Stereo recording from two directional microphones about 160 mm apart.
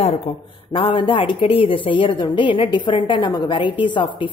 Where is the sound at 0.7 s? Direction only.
35° left (ahead or behind).